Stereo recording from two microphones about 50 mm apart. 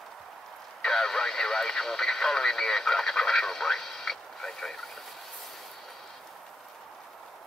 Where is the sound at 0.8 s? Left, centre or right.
Centre.